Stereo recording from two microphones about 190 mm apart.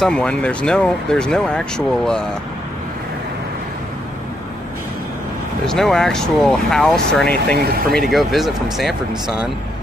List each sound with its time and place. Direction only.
0.0 s speech: 5° left (ahead or behind)
5.7 s speech: centre (ahead or behind)
7.5 s speech: 55° right (ahead or behind)
7.9 s speech: centre (ahead or behind)